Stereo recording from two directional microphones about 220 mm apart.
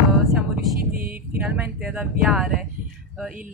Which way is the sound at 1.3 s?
5° right (ahead or behind).